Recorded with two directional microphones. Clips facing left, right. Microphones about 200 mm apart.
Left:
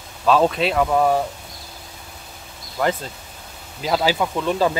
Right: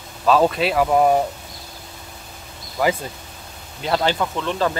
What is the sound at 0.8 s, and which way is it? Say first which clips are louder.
Speech: right 3 dB; 15° right (ahead or behind).